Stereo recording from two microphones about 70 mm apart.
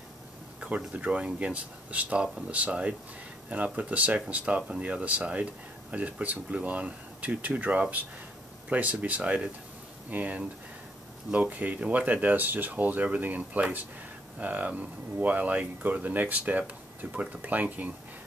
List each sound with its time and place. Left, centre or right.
0.6 s speech: centre